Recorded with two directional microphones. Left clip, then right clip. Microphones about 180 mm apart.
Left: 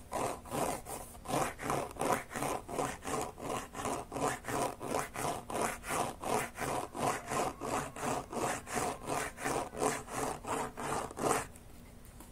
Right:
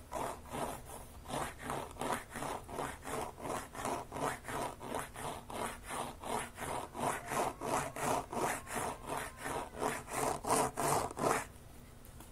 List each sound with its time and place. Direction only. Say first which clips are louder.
0.1 s sawing: left 4 dB; 25° left (ahead or behind)
1.2 s zipper: left 6 dB; 35° left (ahead or behind)
3.2 s wood: even; 15° left (ahead or behind)
4.1 s zipper: left 3 dB; 20° left (ahead or behind)
7.1 s sawing: left 1 dB; 10° left (ahead or behind)
7.6 s sawing: right 1 dB; centre (ahead or behind)
8.5 s wood: left 3 dB; 20° left (ahead or behind)
10.5 s wood: right 5 dB; 35° right (ahead or behind)
11.1 s zipper: left 1 dB; 5° left (ahead or behind)